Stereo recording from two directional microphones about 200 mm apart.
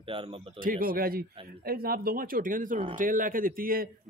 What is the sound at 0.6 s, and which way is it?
A man's voice, 45° right (ahead or behind).